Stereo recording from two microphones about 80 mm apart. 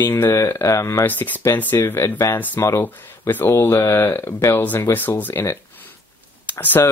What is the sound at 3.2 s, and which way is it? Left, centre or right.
Speech, left.